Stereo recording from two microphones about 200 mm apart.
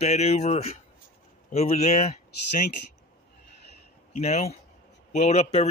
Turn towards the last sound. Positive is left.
turn(degrees=30)  # may be behind; listen again after turning